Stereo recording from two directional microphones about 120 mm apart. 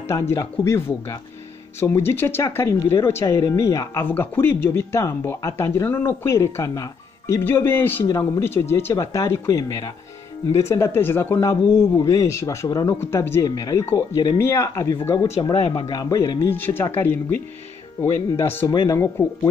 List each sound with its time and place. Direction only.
0.1 s speech: 25° left (ahead or behind)
14.4 s speech: 20° left (ahead or behind)
15.5 s speech: 55° left (ahead or behind)
15.9 s speech: 30° left (ahead or behind)
16.4 s speech: 15° left (ahead or behind)
18.7 s speech: 35° left (ahead or behind)